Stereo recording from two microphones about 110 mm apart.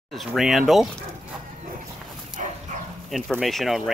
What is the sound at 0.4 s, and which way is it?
Speech, centre (ahead or behind).